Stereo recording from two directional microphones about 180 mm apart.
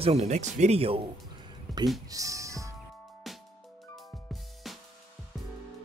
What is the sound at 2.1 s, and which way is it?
Music, 20° right (ahead or behind).